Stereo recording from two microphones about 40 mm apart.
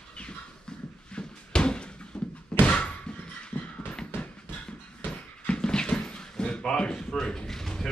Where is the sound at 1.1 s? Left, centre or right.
Left.